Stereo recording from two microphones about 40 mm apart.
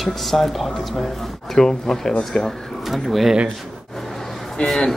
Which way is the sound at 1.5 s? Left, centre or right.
Centre.